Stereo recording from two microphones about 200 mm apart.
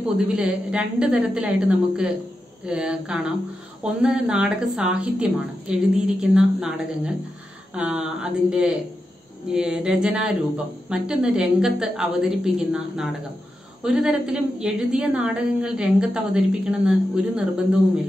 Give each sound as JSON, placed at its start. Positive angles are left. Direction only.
{"t": 0.3, "sound": "a woman's voice", "side_deg": -5}